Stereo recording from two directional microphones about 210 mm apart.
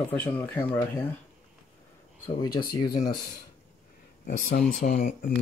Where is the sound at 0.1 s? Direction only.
10° left (ahead or behind).